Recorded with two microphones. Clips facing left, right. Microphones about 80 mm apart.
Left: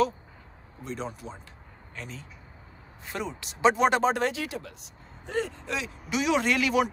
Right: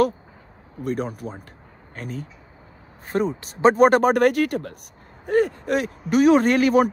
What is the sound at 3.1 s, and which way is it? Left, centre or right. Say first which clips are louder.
Speech: right 11 dB; right.